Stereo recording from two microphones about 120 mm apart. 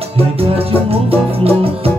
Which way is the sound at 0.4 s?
55° right (ahead or behind).